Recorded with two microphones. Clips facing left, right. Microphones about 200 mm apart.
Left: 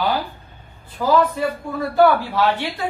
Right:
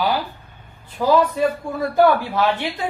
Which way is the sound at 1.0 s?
15° right (ahead or behind).